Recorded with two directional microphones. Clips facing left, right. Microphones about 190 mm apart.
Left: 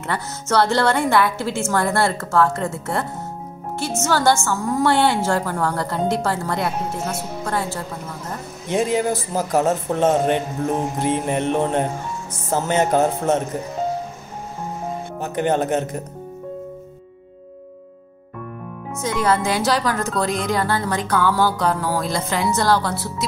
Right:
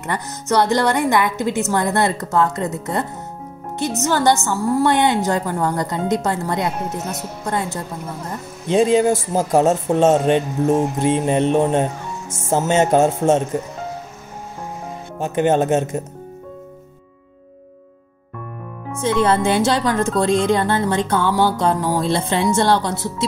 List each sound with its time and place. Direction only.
0.0 s a woman's voice: 15° right (ahead or behind)
15.2 s a woman's voice: 20° right (ahead or behind)
19.0 s a woman's voice: 30° right (ahead or behind)